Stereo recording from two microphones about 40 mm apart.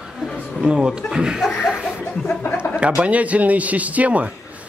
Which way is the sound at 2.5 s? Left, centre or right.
Right.